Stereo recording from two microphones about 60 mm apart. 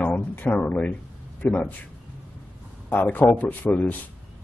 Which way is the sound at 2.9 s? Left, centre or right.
Left.